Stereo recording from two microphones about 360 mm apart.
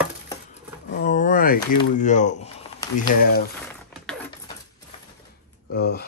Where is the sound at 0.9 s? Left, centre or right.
Left.